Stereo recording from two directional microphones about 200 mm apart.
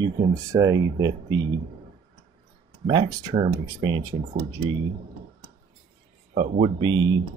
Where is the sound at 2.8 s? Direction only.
20° right (ahead or behind).